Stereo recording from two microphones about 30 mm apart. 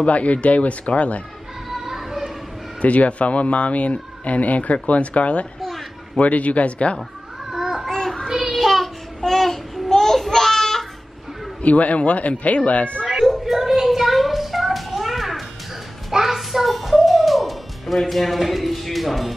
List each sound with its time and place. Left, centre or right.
0.0 s speech: left
1.9 s children playing: centre
2.8 s speech: left
7.5 s babbling: centre
7.9 s child singing: centre
8.5 s child singing: centre
9.2 s babbling: centre
10.2 s a sound: centre
11.6 s speech: left
13.1 s a sound: centre
16.1 s child singing: centre
16.3 s music: centre
18.1 s a man's voice: centre